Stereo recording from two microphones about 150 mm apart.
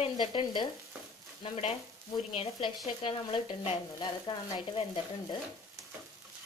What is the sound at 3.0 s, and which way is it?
Sizzle, 35° left (ahead or behind).